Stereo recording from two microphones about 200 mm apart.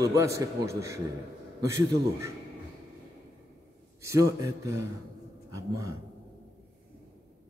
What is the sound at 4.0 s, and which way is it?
A man's voice, 15° right (ahead or behind).